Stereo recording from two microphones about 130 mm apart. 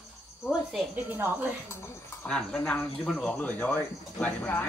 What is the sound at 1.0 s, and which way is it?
Speech, 15° right (ahead or behind).